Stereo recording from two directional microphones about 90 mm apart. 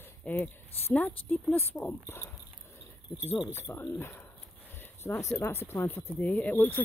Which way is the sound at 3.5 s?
25° left (ahead or behind).